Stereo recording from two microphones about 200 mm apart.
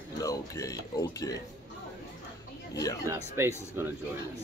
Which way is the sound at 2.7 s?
15° left (ahead or behind).